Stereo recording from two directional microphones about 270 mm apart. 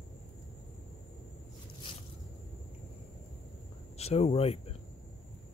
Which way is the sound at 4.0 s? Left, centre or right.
Left.